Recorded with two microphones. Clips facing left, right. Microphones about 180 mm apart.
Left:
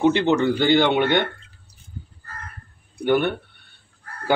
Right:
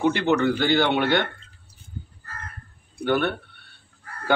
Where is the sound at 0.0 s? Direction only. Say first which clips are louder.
Left 3 dB; 20° left (ahead or behind).